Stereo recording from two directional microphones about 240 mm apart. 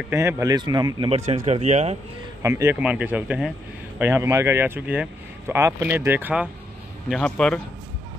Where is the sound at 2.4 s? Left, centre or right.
Centre.